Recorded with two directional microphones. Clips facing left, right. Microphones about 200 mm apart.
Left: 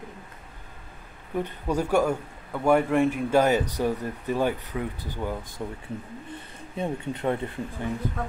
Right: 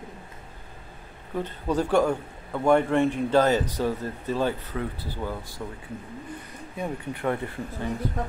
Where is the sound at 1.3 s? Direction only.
10° left (ahead or behind).